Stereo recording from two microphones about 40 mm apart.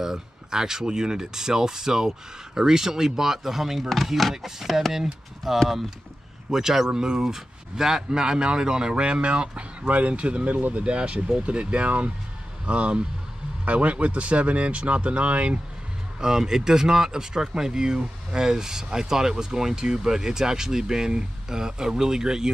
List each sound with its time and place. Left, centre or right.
0.0 s speech: centre; by 15.6 s right
16.2 s speech: centre